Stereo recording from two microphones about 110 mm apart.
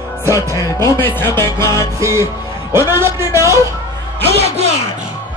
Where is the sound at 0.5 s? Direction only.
25° left (ahead or behind).